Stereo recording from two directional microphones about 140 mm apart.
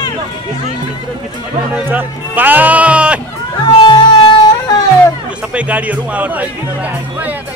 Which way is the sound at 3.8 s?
35° left (ahead or behind).